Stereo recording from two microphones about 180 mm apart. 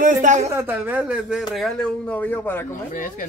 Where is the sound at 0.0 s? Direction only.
45° right (ahead or behind).